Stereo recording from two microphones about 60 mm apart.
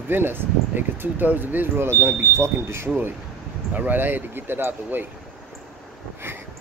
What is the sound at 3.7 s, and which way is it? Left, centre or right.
Speech, right.